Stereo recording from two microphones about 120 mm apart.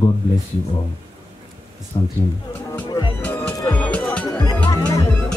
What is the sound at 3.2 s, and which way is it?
Music, 15° left (ahead or behind).